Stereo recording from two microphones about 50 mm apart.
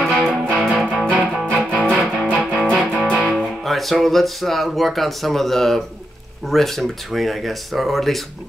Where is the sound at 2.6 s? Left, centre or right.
Centre.